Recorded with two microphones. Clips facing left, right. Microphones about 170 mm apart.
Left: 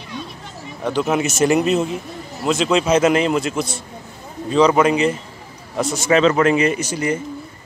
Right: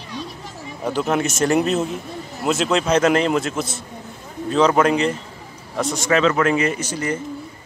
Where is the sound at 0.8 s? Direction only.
Centre (ahead or behind).